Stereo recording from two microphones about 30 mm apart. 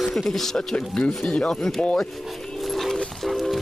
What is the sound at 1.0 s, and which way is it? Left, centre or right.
Speech, left.